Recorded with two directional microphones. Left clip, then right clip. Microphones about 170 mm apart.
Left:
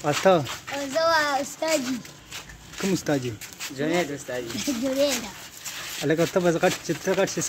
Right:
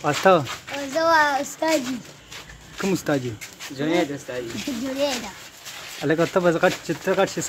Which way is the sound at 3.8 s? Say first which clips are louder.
Right 3 dB; 15° left (ahead or behind).